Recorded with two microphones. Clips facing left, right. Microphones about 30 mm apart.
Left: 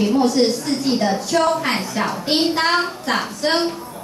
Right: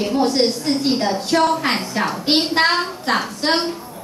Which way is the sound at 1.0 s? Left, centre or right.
Right.